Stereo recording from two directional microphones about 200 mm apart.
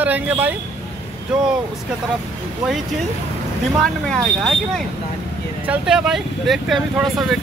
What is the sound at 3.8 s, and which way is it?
Speech, 5° left (ahead or behind).